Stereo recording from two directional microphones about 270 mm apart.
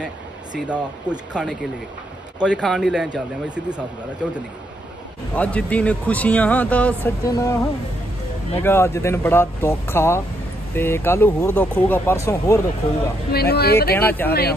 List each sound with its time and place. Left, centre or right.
0.0 s speech: centre
8.6 s speech: centre
13.3 s speech: left
13.9 s speech: centre